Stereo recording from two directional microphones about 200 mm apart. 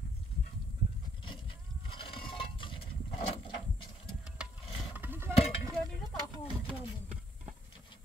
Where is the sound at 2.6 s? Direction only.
25° left (ahead or behind).